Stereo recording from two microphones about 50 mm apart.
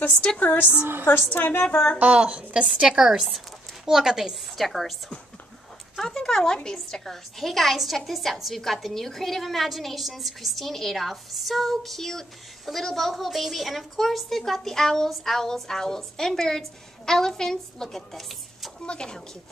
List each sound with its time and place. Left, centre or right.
0.4 s speech: left
2.0 s a woman's voice: right
2.9 s speech: centre
4.6 s a woman's voice: centre
5.9 s a woman's voice: centre
18.9 s a woman's voice: centre